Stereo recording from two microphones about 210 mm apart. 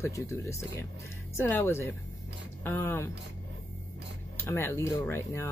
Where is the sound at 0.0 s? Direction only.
15° left (ahead or behind).